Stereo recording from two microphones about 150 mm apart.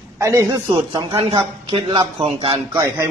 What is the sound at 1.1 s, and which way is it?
A man's voice, 35° right (ahead or behind).